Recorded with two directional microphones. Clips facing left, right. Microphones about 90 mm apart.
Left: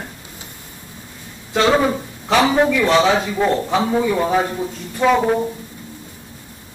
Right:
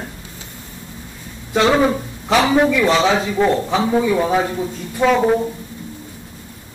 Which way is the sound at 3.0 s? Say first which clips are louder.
Left 1 dB; 15° left (ahead or behind).